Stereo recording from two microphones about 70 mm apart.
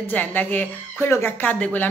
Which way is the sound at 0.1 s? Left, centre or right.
Left.